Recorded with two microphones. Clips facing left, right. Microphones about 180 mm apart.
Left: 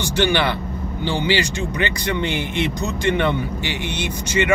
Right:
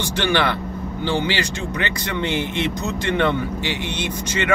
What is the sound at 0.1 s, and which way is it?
Speech, 20° left (ahead or behind).